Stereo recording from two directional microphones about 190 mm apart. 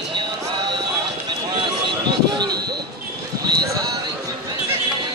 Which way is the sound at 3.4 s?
20° right (ahead or behind).